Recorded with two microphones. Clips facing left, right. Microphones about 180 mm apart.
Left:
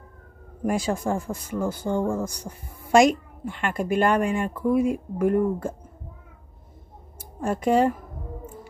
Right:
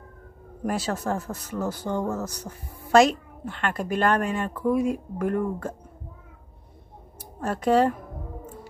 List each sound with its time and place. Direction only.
0.7 s speech: 10° left (ahead or behind)
7.2 s speech: 10° left (ahead or behind)